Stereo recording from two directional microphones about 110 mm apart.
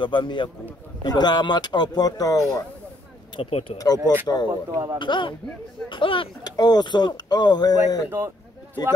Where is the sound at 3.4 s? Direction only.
60° left (ahead or behind).